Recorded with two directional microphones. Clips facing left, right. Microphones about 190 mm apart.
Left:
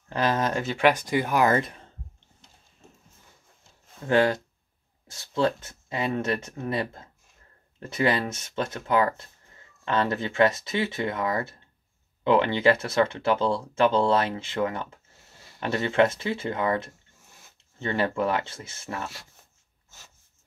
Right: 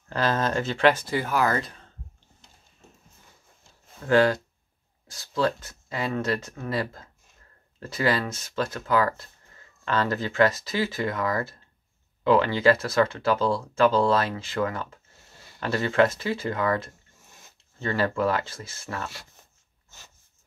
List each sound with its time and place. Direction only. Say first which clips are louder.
0.1 s speech: even; 15° left (ahead or behind)
4.1 s speech: right 1 dB; 20° left (ahead or behind)